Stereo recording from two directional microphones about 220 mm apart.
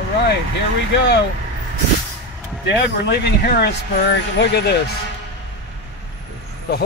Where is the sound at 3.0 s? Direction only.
50° left (ahead or behind).